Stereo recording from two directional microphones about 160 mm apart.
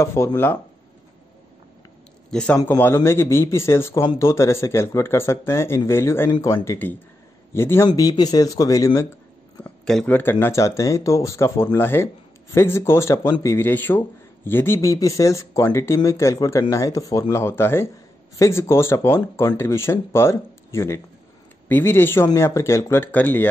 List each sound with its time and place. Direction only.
0.0 s speech: 15° left (ahead or behind)
2.3 s speech: 5° left (ahead or behind)
9.6 s speech: 5° left (ahead or behind)